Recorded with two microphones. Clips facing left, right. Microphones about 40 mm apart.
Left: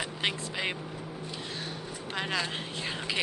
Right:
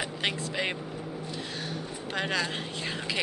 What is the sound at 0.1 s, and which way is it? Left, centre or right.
Speech, centre.